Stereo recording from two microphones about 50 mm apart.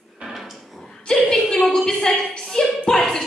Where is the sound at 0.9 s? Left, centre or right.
Centre.